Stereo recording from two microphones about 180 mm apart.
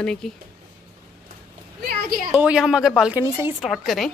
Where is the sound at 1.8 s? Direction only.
55° right (ahead or behind).